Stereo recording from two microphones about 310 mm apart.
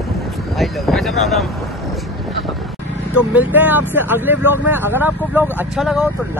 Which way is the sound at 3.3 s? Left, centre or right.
Centre.